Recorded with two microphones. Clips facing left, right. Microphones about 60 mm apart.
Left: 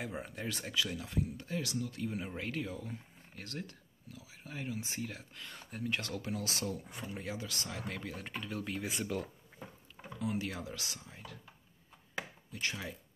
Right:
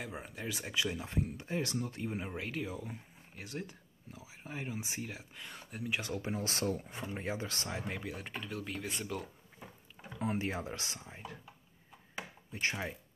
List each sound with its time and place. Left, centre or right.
0.0 s speech: centre
0.7 s speech: right
2.3 s speech: centre; by 7.0 s right
7.0 s speech: right; by 9.3 s centre
10.1 s speech: right
12.5 s speech: right